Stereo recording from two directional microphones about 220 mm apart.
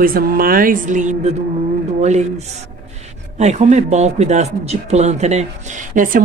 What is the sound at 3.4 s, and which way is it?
Speech, 30° right (ahead or behind).